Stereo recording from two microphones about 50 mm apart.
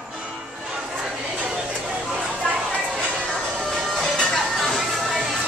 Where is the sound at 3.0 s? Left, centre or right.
Right.